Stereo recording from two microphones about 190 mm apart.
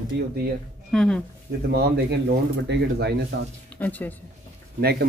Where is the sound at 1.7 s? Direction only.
60° right (ahead or behind).